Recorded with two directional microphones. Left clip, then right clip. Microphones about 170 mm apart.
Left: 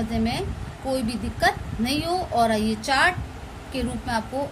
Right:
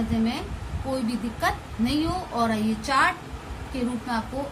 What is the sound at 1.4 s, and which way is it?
A woman's voice, 45° left (ahead or behind).